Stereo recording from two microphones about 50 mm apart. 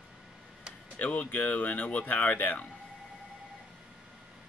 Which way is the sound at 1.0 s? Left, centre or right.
Left.